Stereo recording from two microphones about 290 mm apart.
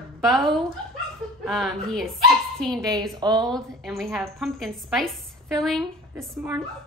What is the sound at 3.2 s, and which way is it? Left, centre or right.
Speech, centre.